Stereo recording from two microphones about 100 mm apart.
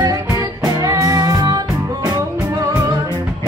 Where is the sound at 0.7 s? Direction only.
30° right (ahead or behind).